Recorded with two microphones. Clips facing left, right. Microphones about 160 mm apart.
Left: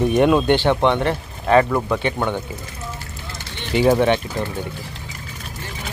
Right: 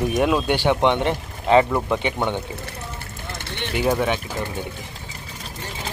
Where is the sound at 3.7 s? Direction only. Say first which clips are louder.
Left 6 dB; centre (ahead or behind).